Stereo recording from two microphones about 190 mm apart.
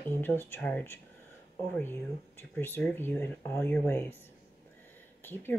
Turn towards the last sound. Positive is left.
turn(degrees=10)  # may be behind; listen again after turning